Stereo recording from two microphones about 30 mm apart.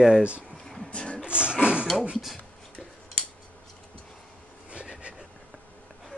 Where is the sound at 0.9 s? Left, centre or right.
Left.